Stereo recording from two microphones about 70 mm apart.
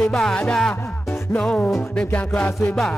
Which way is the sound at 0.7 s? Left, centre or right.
Left.